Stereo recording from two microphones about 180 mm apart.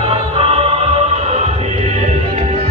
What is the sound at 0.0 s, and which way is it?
Music, 30° right (ahead or behind).